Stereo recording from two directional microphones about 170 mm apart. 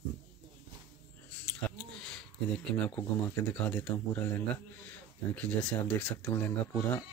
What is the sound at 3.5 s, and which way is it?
Speech, 10° left (ahead or behind).